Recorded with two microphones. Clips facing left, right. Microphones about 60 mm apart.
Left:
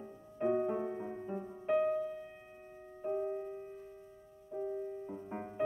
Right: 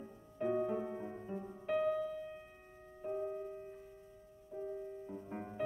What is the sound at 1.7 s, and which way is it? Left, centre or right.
Music, left.